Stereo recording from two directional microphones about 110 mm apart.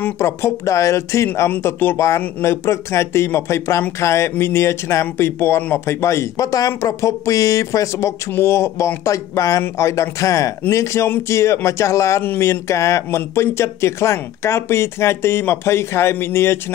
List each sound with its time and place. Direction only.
0.0 s speech: 25° left (ahead or behind)